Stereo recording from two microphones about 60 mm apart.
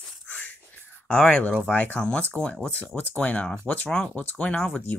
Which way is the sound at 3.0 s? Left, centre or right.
Left.